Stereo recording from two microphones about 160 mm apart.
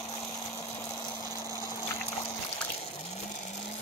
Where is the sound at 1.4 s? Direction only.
20° left (ahead or behind).